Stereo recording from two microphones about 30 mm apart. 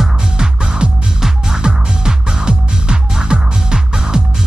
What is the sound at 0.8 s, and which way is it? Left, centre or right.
Music, right.